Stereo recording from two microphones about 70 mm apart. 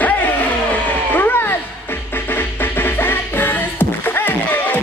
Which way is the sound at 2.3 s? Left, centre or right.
Left.